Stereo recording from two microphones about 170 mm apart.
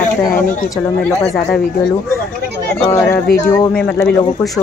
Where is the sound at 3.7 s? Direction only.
10° left (ahead or behind).